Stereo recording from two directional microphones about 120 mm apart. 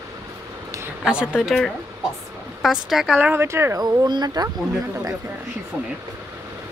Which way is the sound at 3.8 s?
35° right (ahead or behind).